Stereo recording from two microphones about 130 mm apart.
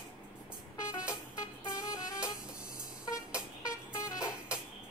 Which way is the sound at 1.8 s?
25° left (ahead or behind).